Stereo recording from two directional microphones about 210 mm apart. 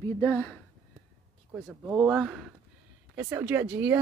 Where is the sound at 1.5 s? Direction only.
5° right (ahead or behind).